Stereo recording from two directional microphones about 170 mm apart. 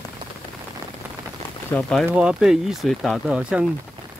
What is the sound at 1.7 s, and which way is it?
Speech, 5° left (ahead or behind).